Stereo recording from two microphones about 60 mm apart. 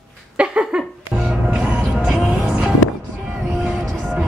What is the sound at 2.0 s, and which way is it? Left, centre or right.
Music, centre.